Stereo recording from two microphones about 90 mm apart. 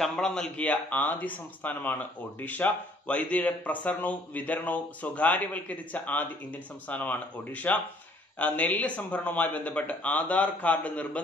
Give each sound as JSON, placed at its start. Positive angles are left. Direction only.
{"t": 0.0, "sound": "a man's voice", "side_deg": 5}